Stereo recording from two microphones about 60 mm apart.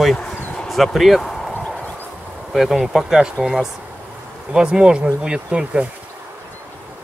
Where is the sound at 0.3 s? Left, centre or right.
Left.